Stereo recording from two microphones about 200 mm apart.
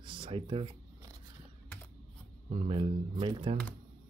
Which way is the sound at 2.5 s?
30° right (ahead or behind).